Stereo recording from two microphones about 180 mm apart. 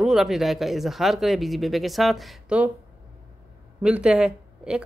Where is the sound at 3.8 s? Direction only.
5° right (ahead or behind).